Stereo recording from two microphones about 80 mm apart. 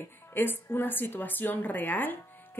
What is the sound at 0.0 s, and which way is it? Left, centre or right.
Speech, left.